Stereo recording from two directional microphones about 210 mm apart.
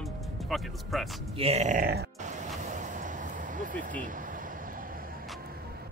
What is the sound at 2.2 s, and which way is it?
Music, 35° right (ahead or behind).